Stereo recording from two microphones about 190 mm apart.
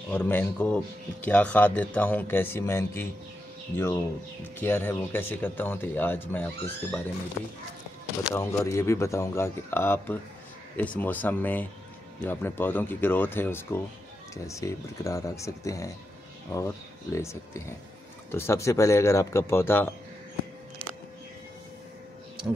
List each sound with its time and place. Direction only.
0.1 s speech: 10° left (ahead or behind)
8.2 s speech: 15° left (ahead or behind)